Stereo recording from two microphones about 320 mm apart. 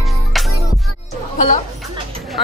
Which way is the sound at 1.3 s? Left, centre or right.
Left.